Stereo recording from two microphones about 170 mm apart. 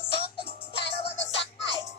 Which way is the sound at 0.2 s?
35° left (ahead or behind).